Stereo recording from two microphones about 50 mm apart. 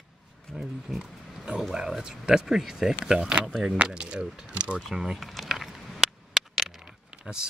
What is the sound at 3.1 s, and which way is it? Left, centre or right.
Speech, right.